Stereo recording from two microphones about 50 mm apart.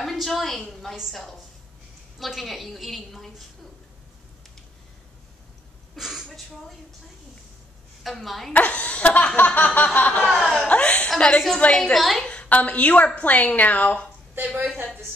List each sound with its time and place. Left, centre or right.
0.0 s a woman's voice: centre
2.1 s a woman's voice: centre
5.9 s speech: centre
8.0 s a woman's voice: centre
8.5 s a woman's voice: left
9.9 s snicker: left
10.4 s speech: centre
10.7 s a woman's voice: left
12.0 s a woman's voice: centre
12.3 s a woman's voice: left
14.4 s a woman's voice: right